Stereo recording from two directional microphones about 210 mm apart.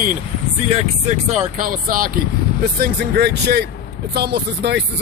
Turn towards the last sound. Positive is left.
turn(degrees=-55)  # may be behind; listen again after turning